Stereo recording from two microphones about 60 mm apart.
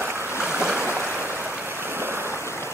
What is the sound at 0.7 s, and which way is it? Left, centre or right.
Stream, right.